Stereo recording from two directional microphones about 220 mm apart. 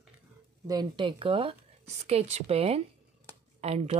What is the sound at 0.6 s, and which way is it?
Speech, 20° right (ahead or behind).